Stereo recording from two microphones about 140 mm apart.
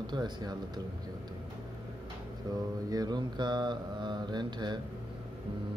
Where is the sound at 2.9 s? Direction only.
30° right (ahead or behind).